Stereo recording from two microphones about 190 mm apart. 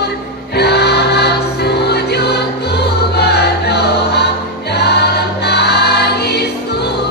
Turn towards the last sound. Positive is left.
turn(degrees=60)  # may be behind; listen again after turning